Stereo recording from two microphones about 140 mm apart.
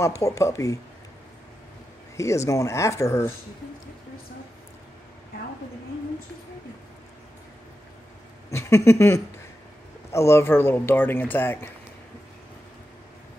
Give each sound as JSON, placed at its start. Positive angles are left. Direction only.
{"t": 0.0, "sound": "speech", "side_deg": 20}
{"t": 2.1, "sound": "speech", "side_deg": 20}
{"t": 8.5, "sound": "a sound", "side_deg": 20}
{"t": 10.1, "sound": "speech", "side_deg": 20}